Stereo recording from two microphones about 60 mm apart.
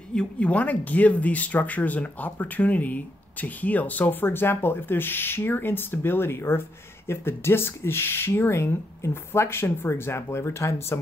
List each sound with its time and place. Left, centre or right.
0.1 s speech: centre; by 11.0 s left